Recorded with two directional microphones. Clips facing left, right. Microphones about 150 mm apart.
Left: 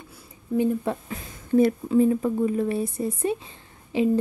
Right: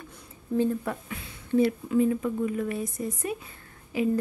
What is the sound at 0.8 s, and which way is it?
Speech, 35° left (ahead or behind).